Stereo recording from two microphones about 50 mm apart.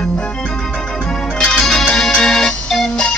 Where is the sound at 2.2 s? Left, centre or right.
Centre.